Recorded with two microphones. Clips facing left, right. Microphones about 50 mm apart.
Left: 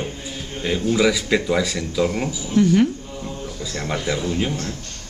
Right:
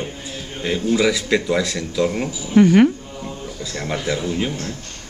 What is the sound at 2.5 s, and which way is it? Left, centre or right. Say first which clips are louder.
Speech: right 4 dB; right.